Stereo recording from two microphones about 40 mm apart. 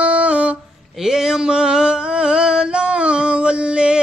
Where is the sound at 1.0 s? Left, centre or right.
Centre.